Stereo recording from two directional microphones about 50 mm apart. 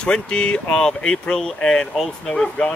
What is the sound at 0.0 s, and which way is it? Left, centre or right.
Speech, left.